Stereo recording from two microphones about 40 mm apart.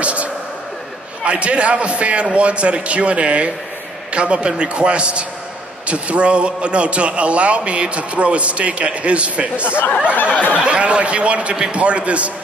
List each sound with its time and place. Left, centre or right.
0.0 s music: right
1.2 s a man's voice: right
10.1 s a sound: left
10.6 s a man's voice: right